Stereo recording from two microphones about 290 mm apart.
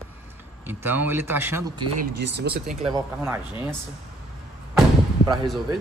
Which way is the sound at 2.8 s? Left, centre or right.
Centre.